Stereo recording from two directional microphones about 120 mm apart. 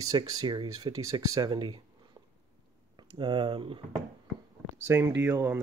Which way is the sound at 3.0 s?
40° right (ahead or behind).